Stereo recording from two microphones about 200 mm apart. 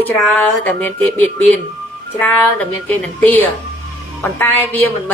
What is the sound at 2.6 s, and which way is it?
Speech, 10° left (ahead or behind).